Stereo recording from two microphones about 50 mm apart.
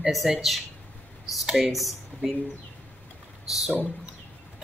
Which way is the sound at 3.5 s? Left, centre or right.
Centre.